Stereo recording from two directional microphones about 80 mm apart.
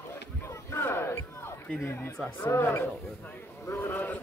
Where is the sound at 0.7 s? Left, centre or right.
Left.